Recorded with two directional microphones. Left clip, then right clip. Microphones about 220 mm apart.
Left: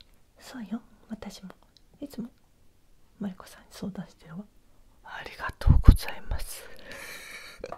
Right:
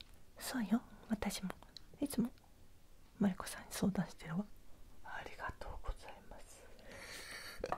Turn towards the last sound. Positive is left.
turn(degrees=5)  # may be behind; listen again after turning